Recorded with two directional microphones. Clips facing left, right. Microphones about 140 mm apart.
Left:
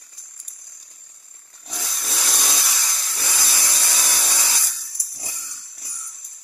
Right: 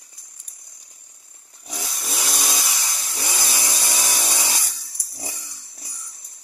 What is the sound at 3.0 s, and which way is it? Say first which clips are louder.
Chainsaw: right 3 dB; 20° right (ahead or behind).